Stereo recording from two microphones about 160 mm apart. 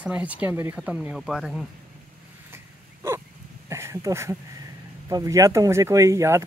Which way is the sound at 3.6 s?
15° right (ahead or behind).